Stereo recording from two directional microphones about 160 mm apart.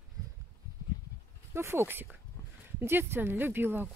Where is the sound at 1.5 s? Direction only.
15° right (ahead or behind).